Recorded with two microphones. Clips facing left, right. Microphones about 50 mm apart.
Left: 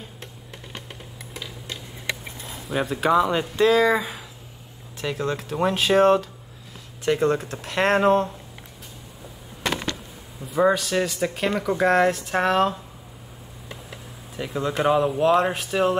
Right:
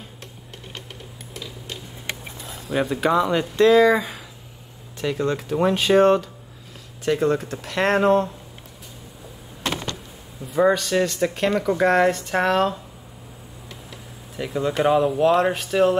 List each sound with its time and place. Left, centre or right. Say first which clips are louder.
2.7 s speech: even; centre
7.1 s speech: right 1 dB; left
10.6 s speech: right 2 dB; centre
14.3 s speech: right 2 dB; centre